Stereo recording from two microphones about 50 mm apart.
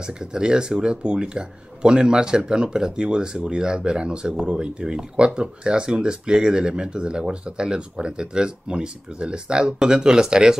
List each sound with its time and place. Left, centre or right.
0.0 s speech: centre